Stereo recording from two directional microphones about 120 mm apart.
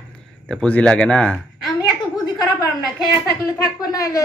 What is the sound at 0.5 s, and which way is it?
Speech, 10° left (ahead or behind).